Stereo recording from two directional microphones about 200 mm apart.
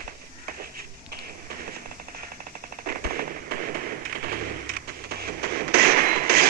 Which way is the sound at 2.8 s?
45° right (ahead or behind).